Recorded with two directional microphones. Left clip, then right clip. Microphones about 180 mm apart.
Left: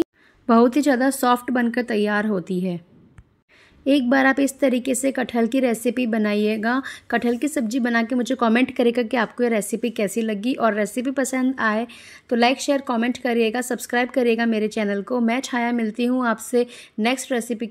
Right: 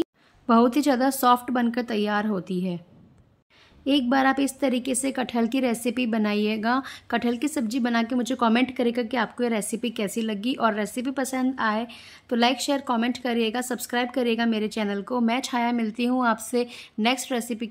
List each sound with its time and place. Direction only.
0.5 s a woman's voice: 15° left (ahead or behind)
3.8 s a woman's voice: 20° left (ahead or behind)